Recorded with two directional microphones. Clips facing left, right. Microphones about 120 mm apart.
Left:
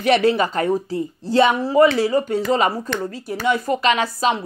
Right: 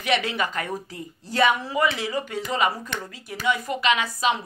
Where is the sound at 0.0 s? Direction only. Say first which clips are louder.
Left 8 dB; 35° left (ahead or behind).